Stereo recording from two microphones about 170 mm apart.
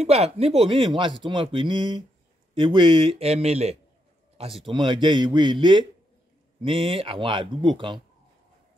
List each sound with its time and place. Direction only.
0.0 s speech: 35° right (ahead or behind)